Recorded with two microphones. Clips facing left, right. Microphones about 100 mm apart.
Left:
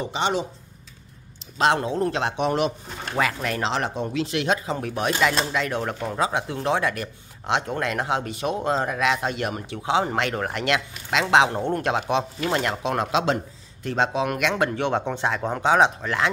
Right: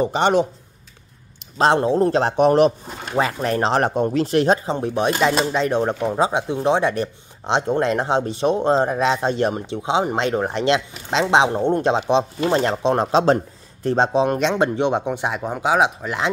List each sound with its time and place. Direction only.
0.0 s speech: 50° right (ahead or behind)
1.6 s speech: 30° right (ahead or behind)
3.2 s speech: 30° right (ahead or behind)
14.5 s speech: 20° right (ahead or behind)